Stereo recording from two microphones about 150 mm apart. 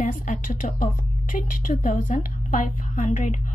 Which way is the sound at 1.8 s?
60° left (ahead or behind).